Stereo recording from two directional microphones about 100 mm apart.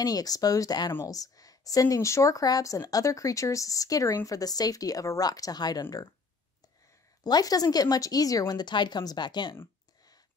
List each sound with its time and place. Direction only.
0.0 s speech: 40° left (ahead or behind)
7.2 s speech: 40° left (ahead or behind)